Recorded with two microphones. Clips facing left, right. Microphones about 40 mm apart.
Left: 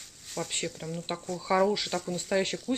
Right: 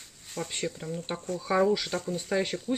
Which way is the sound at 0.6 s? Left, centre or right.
Right.